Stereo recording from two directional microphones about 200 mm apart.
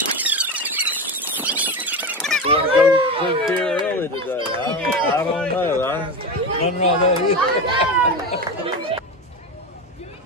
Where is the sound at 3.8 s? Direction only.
10° left (ahead or behind).